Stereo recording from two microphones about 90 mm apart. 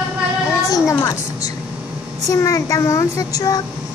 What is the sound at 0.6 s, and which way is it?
Speech, 40° left (ahead or behind).